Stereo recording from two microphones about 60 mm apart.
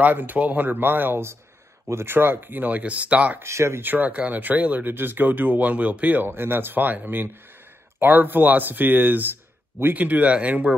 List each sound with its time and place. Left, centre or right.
0.0 s speech: right
3.4 s speech: right
3.8 s speech: right